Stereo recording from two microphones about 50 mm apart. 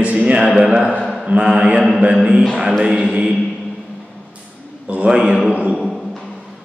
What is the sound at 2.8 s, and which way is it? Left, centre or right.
Chant, centre.